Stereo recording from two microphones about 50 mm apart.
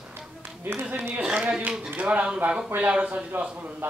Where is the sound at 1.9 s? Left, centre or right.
Right.